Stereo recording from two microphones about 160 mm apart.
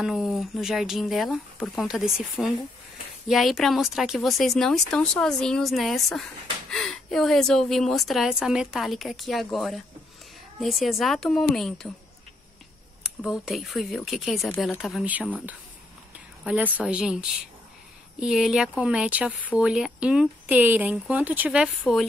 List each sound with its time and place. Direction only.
0.0 s a woman's voice: centre (ahead or behind)
13.2 s a woman's voice: 5° right (ahead or behind)
16.4 s speech: 10° right (ahead or behind)